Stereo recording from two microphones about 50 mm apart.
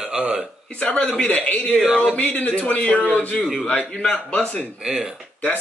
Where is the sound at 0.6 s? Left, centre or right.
Left.